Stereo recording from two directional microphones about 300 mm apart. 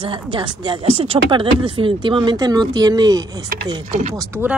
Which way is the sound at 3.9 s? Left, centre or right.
Right.